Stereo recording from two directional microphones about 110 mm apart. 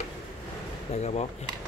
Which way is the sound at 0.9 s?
80° left.